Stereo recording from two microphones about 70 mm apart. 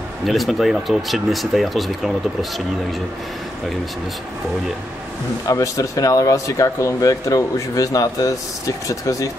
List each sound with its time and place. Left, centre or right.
0.2 s speech: centre
5.5 s speech: left